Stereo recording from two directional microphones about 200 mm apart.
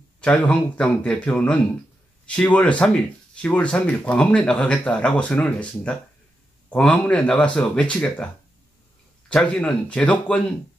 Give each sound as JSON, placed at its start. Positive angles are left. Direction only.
{"t": 0.2, "sound": "speech", "side_deg": 5}
{"t": 9.3, "sound": "speech", "side_deg": 5}